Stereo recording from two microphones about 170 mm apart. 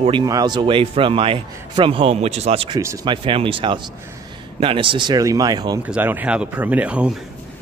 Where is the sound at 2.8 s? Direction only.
15° right (ahead or behind).